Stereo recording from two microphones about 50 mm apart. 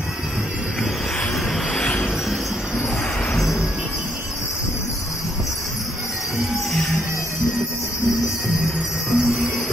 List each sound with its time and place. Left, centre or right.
1.8 s music: left
9.1 s music: centre